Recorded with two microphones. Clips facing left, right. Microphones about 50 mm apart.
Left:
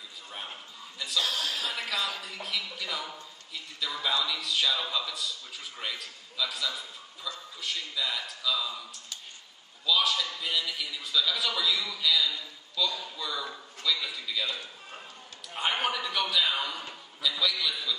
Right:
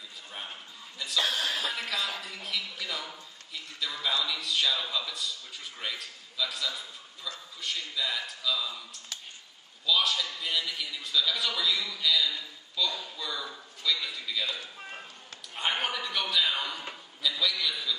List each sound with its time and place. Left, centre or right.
0.3 s bow-wow: centre
1.2 s a sound: right
1.7 s a man's voice: centre
9.8 s a man's voice: centre